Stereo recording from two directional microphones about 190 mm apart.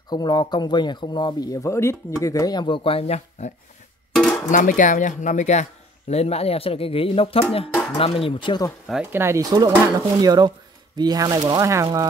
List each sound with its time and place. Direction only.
0.1 s speech: 20° left (ahead or behind)
4.1 s music: centre (ahead or behind)
4.5 s speech: 45° left (ahead or behind); by 8.7 s 25° left (ahead or behind)
8.8 s speech: 5° right (ahead or behind)